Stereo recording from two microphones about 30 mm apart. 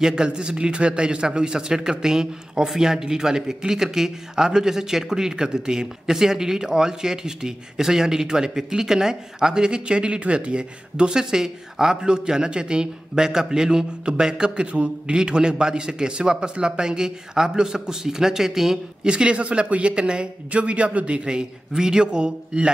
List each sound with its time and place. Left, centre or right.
0.0 s a man's voice: right
14.7 s speech: right
15.1 s a man's voice: right; by 18.8 s centre
19.0 s speech: right
20.5 s a man's voice: right
21.3 s a man's voice: right